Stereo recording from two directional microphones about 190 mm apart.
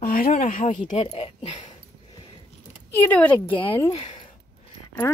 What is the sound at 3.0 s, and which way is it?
Speech, 10° left (ahead or behind).